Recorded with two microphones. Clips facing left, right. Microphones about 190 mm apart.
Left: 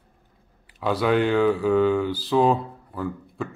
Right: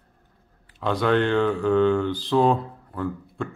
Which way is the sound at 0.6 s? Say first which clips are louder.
Even; 5° left (ahead or behind).